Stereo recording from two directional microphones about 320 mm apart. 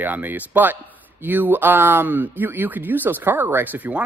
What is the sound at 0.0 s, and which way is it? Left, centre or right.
Speech, centre.